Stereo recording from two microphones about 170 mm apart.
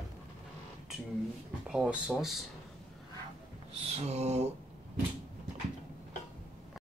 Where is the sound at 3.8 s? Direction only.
40° right (ahead or behind).